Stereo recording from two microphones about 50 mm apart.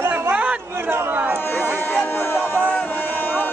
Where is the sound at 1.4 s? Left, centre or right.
Left.